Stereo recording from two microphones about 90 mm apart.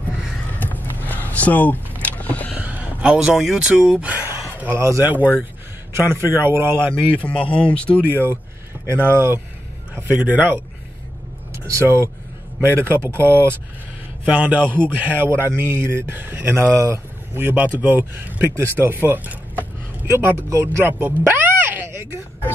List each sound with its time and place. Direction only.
0.6 s vehicle: 20° left (ahead or behind)
2.5 s speech: 15° right (ahead or behind)
4.7 s speech: 30° right (ahead or behind)
6.9 s speech: 15° left (ahead or behind)
8.8 s speech: 25° right (ahead or behind)
11.5 s speech: 30° right (ahead or behind)
14.2 s speech: 15° right (ahead or behind)
21.3 s a sound: 20° right (ahead or behind)